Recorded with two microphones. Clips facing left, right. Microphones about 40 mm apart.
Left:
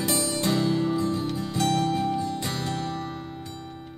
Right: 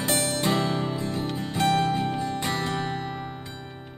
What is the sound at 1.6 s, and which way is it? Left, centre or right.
Music, right.